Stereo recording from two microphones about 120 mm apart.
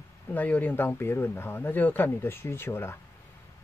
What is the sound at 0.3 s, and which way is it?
Speech, 15° left (ahead or behind).